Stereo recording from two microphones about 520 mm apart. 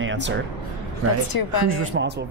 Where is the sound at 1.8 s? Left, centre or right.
Right.